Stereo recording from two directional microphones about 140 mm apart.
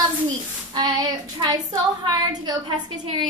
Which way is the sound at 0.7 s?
30° right (ahead or behind).